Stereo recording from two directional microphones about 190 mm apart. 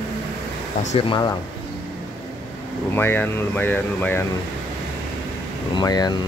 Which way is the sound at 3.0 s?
10° left (ahead or behind).